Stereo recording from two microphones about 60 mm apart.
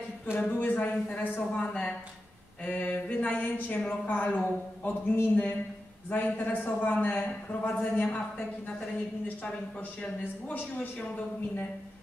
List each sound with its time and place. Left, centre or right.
0.5 s a man's voice: left
10.2 s speech: left